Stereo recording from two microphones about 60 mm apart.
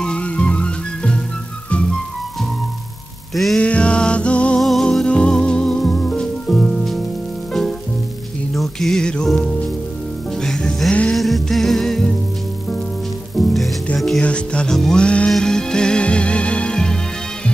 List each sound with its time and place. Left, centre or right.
0.0 s music: centre
3.5 s music: centre
4.6 s music: centre
5.0 s music: centre
8.5 s music: centre
13.4 s music: centre
14.2 s music: centre